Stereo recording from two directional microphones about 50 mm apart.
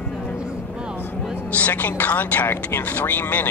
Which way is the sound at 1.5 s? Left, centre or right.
Left.